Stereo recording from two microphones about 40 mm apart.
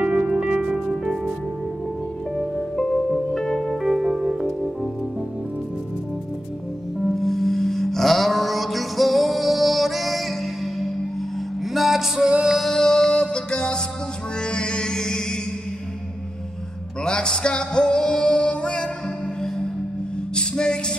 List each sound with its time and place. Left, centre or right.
0.0 s music: right
0.3 s music: right
0.7 s music: centre
2.3 s music: centre
3.8 s music: centre
7.0 s music: centre
11.7 s music: centre
12.3 s music: right
12.6 s music: centre
17.0 s music: left
20.3 s music: left